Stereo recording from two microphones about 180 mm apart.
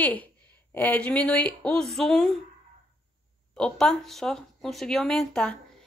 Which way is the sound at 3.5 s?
5° left (ahead or behind).